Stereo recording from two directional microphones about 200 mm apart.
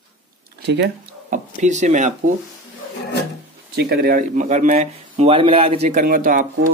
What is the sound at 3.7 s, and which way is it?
Speech, 55° right (ahead or behind).